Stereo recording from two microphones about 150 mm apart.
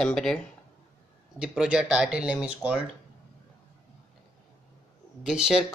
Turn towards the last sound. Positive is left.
turn(degrees=-5)  # may be behind; listen again after turning